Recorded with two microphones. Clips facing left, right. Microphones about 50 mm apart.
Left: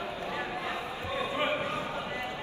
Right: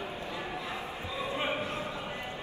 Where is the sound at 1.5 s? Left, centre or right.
Left.